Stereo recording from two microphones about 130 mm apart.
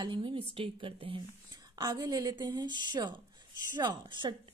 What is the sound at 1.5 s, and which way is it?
A woman's voice, 30° right (ahead or behind).